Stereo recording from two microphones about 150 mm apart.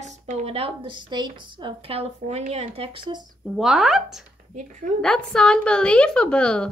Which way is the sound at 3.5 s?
Centre (ahead or behind).